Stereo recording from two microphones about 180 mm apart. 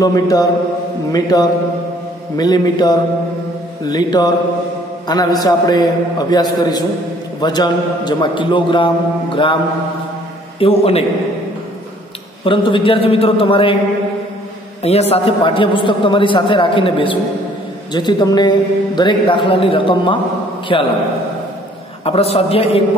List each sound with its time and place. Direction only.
0.0 s a man's voice: 20° left (ahead or behind)
10.6 s a man's voice: 35° left (ahead or behind)
12.4 s a man's voice: 30° left (ahead or behind)
14.8 s a man's voice: 35° left (ahead or behind)
22.0 s a man's voice: 35° left (ahead or behind)